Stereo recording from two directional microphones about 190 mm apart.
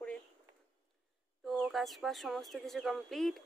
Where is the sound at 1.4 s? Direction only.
Centre (ahead or behind).